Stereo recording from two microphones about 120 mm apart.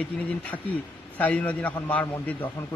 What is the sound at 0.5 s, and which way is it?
A man's voice, 15° left (ahead or behind).